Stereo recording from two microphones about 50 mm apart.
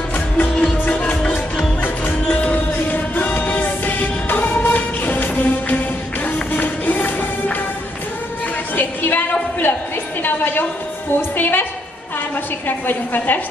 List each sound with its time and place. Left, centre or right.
0.4 s music: left
2.5 s music: left
8.7 s music: left
10.2 s a sound: left
11.1 s music: left
12.6 s a woman's voice: left